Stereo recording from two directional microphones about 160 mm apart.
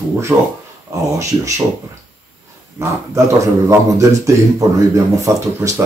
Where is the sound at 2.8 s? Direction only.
20° right (ahead or behind).